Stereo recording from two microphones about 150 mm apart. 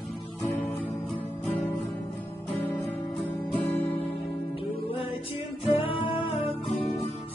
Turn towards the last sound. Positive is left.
turn(degrees=40)  # may be behind; listen again after turning